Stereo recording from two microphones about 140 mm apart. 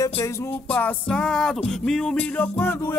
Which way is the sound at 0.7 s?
10° left (ahead or behind).